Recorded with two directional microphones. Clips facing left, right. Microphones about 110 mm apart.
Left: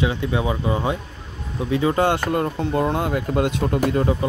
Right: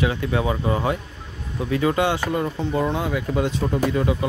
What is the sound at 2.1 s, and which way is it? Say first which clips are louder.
Speech: left 2 dB; 55° left (ahead or behind).